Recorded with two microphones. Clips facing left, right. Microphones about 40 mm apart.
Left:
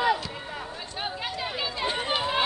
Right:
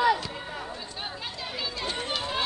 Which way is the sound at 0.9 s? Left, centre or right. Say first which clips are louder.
Left 4 dB; centre.